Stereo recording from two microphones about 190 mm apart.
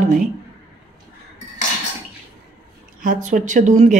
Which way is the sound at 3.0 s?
40° right (ahead or behind).